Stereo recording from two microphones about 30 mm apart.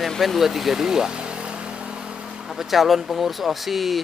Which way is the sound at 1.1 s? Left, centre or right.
Right.